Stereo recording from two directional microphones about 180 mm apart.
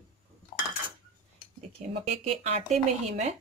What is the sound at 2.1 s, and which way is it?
Speech, 35° right (ahead or behind).